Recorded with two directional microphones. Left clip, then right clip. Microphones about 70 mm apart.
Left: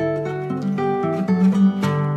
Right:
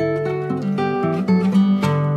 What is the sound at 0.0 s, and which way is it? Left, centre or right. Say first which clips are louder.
Music: right 2 dB; right.